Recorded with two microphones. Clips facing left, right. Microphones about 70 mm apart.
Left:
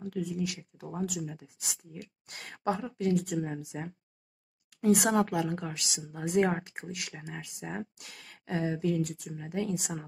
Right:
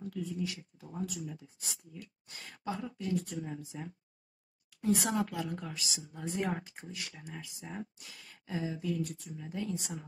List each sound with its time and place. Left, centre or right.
0.0 s speech: left